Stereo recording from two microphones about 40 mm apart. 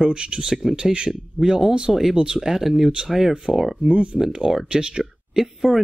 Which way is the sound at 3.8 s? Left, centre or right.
Right.